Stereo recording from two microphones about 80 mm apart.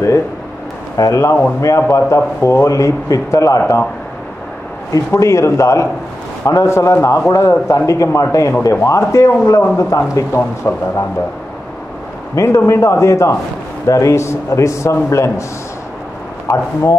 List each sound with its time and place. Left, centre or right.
0.9 s a man's voice: left
4.9 s speech: left
12.4 s speech: left